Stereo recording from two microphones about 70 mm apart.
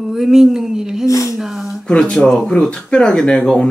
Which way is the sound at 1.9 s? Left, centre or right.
Centre.